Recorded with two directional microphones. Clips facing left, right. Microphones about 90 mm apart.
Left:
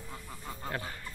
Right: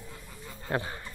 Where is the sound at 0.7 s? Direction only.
25° right (ahead or behind).